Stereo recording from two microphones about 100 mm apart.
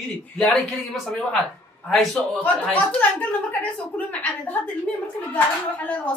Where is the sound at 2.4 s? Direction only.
15° left (ahead or behind).